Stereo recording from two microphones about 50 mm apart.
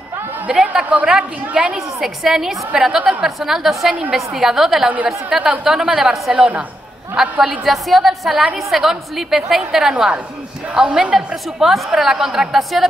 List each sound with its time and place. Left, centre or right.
0.5 s a woman's voice: centre
2.0 s a woman's voice: centre; by 3.3 s right
3.3 s a woman's voice: centre
4.8 s a woman's voice: right
5.3 s a woman's voice: centre
7.2 s a woman's voice: centre